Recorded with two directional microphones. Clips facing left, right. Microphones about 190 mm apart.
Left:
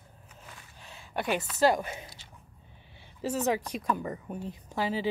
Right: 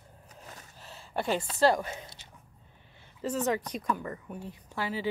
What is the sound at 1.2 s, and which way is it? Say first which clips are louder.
Speech: even; 25° right (ahead or behind).